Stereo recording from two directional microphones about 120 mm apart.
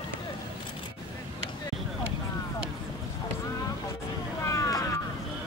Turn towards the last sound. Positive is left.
turn(degrees=25)  # may be behind; listen again after turning